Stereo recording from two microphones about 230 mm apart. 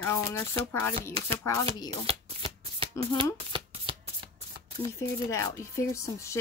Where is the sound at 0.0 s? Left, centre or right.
Centre.